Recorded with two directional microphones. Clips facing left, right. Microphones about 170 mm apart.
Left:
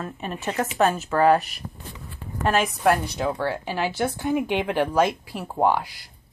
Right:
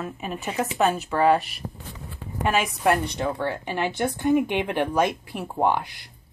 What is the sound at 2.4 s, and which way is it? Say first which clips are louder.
A woman's voice: left 1 dB; centre (ahead or behind).